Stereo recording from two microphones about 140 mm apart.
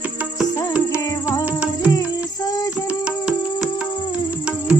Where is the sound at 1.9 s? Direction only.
25° left (ahead or behind).